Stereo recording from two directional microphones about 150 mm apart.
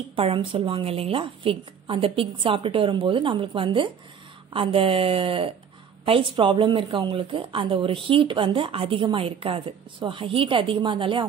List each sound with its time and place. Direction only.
0.1 s a woman's voice: 35° right (ahead or behind)